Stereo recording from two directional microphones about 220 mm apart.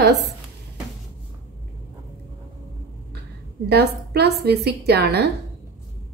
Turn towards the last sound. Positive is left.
turn(degrees=-50)  # may be behind; listen again after turning